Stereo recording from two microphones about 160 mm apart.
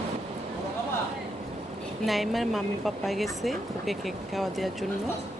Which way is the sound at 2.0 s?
Centre (ahead or behind).